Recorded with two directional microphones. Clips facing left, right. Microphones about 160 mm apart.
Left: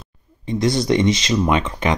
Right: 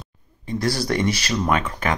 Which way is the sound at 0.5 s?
20° left (ahead or behind).